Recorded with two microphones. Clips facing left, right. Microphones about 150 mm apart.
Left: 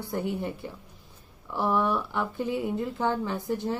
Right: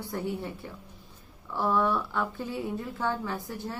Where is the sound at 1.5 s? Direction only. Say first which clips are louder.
Left 1 dB; 15° left (ahead or behind).